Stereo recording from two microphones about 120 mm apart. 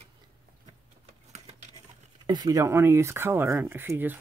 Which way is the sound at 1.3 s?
70° right (ahead or behind).